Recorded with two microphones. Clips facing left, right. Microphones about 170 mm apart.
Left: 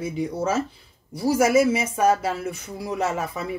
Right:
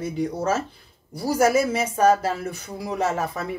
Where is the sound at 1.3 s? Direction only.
5° left (ahead or behind).